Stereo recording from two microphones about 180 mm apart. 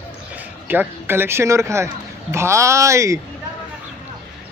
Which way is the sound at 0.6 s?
10° right (ahead or behind).